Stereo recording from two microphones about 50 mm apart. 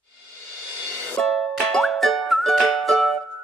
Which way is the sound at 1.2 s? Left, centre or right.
Centre.